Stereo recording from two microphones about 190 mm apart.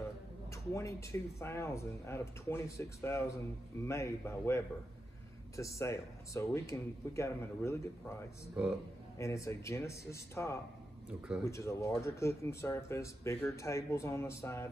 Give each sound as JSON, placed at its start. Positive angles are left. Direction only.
{"t": 0.5, "sound": "speech", "side_deg": 15}
{"t": 9.2, "sound": "speech", "side_deg": 15}
{"t": 11.1, "sound": "speech", "side_deg": -5}
{"t": 11.4, "sound": "speech", "side_deg": 15}